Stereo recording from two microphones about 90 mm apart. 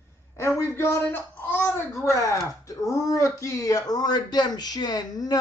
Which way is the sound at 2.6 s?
35° left (ahead or behind).